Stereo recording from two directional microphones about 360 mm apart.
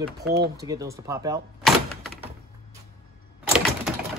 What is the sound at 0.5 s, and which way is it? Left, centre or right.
Speech, centre.